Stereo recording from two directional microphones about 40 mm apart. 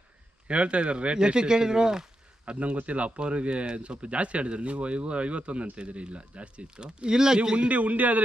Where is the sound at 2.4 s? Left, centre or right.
Right; by 7.4 s centre.